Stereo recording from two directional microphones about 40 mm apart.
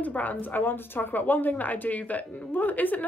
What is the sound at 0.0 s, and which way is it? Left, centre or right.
A woman's voice, left.